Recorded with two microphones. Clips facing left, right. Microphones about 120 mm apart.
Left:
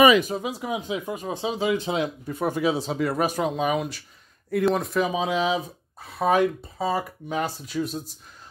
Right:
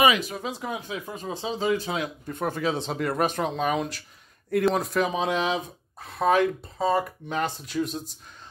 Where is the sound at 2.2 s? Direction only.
5° left (ahead or behind).